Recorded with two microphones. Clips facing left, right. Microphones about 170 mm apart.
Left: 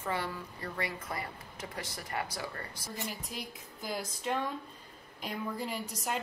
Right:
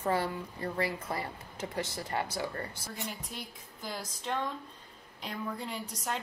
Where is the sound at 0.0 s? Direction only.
35° right (ahead or behind).